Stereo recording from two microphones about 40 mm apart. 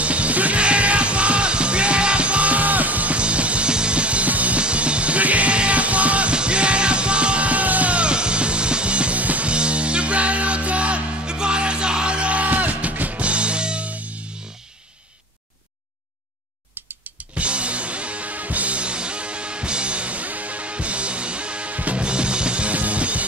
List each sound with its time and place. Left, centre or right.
0.0 s music: right
9.5 s music: right
13.2 s music: right
17.4 s music: right
22.0 s music: right